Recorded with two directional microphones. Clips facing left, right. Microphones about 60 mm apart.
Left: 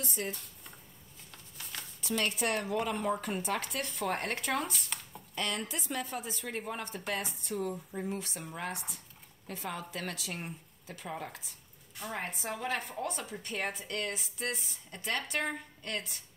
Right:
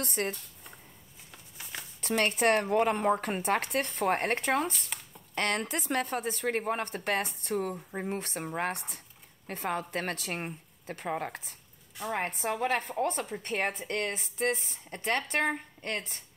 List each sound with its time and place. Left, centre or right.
0.0 s speech: right
1.3 s a sound: centre
2.0 s speech: right
4.7 s chopping: centre
5.3 s speech: right